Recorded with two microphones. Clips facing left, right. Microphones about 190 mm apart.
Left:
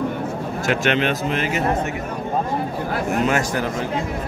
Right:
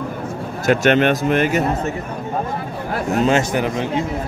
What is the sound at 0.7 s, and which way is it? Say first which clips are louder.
Speech: right 6 dB; 45° right (ahead or behind).